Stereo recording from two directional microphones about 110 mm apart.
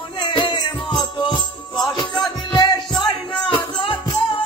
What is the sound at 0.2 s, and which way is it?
Music, 40° left (ahead or behind).